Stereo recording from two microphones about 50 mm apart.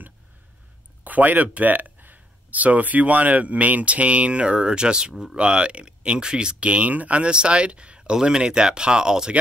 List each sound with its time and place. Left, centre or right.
1.0 s speech: right; by 9.3 s centre